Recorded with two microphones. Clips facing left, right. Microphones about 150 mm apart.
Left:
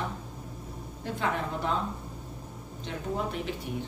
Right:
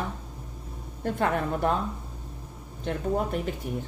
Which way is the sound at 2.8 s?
50° right (ahead or behind).